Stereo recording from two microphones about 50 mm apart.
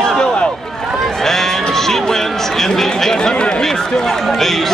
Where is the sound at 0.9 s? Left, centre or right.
Centre.